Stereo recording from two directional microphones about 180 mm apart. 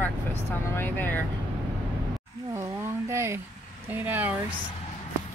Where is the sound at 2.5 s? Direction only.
15° right (ahead or behind).